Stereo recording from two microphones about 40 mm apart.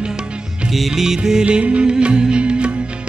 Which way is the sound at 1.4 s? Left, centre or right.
Right.